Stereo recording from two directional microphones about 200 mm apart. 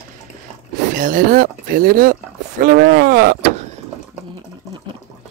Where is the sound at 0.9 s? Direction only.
45° right (ahead or behind).